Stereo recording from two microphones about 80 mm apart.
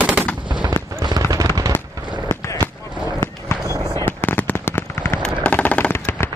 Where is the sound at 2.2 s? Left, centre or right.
Left.